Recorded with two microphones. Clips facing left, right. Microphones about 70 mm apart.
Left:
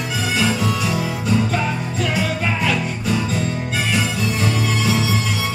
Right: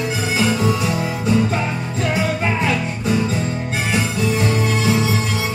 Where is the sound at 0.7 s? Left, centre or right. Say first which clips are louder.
Right 2 dB; right.